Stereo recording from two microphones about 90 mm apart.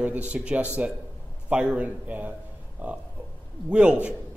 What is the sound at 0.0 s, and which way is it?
A man's voice, 15° right (ahead or behind).